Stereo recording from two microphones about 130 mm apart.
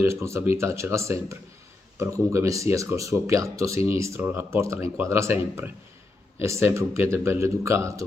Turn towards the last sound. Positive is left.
turn(degrees=-20)  # may be behind; listen again after turning